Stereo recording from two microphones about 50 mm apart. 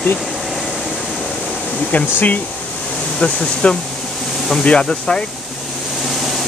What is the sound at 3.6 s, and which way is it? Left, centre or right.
Speech, left.